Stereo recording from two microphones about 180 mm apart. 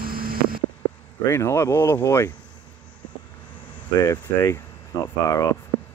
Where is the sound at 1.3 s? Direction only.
15° left (ahead or behind).